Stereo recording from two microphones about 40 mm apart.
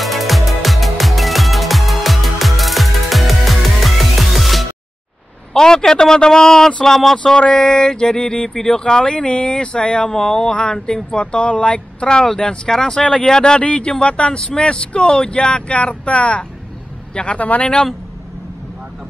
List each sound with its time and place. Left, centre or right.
0.0 s music: centre
5.5 s a man's voice: centre
7.3 s speech: left
10.1 s a man's voice: centre
13.6 s speech: left